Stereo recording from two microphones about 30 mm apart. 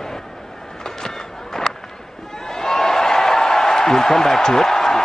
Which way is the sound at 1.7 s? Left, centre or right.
Left.